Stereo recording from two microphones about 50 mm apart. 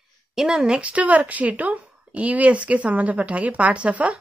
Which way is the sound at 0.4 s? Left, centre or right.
Centre.